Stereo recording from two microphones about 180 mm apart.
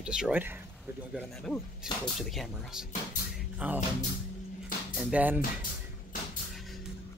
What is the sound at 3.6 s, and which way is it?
Speech, 5° right (ahead or behind).